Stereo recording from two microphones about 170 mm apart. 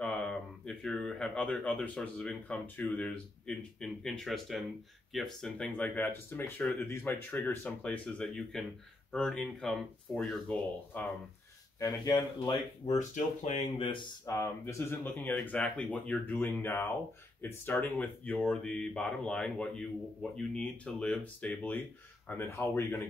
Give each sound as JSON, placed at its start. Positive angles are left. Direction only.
{"t": 0.0, "sound": "speech", "side_deg": 5}
{"t": 11.8, "sound": "speech", "side_deg": 25}
{"t": 12.8, "sound": "speech", "side_deg": 45}
{"t": 13.8, "sound": "speech", "side_deg": 30}
{"t": 14.3, "sound": "speech", "side_deg": 15}